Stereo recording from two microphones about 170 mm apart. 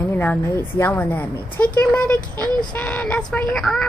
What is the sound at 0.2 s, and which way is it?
A woman's voice, 10° left (ahead or behind).